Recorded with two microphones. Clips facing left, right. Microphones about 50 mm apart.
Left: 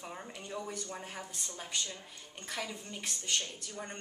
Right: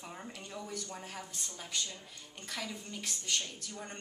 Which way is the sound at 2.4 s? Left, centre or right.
Centre.